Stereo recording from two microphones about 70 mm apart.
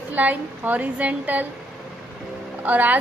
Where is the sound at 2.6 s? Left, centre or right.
Right.